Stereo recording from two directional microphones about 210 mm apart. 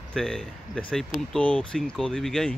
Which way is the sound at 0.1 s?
Centre (ahead or behind).